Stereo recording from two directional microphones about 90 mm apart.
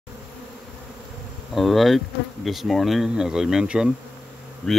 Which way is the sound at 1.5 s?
Centre (ahead or behind).